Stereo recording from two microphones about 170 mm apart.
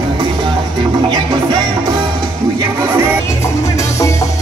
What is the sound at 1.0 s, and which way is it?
Music, 25° right (ahead or behind).